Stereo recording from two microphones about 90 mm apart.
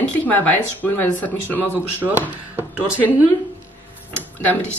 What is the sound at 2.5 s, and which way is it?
Speech, 20° right (ahead or behind).